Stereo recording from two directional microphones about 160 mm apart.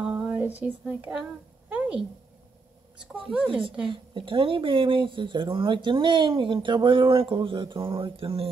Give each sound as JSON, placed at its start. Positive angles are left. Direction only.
{"t": 0.0, "sound": "a sound", "side_deg": -5}
{"t": 3.1, "sound": "a woman's voice", "side_deg": 0}
{"t": 3.9, "sound": "speech", "side_deg": -30}